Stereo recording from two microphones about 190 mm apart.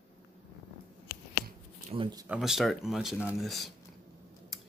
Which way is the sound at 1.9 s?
25° right (ahead or behind).